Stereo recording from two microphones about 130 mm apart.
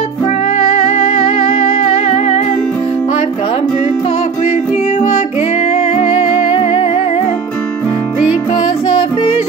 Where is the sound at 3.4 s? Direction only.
40° left (ahead or behind).